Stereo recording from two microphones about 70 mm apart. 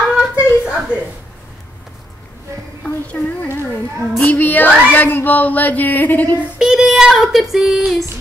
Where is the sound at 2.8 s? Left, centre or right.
Centre.